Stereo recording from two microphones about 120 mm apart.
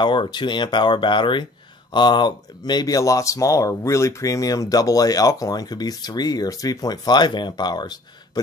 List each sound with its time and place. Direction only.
0.0 s speech: 40° left (ahead or behind)